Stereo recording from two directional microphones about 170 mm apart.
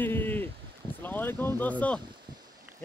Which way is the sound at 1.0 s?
10° left (ahead or behind).